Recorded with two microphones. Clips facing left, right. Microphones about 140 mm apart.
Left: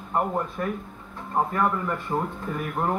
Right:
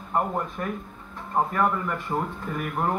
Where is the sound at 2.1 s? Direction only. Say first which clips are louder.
Left 1 dB; centre (ahead or behind).